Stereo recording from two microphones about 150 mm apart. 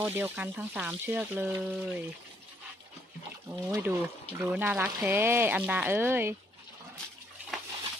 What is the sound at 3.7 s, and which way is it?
Speech, 15° right (ahead or behind).